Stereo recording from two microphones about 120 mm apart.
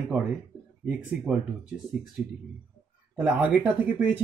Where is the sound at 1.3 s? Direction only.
5° right (ahead or behind).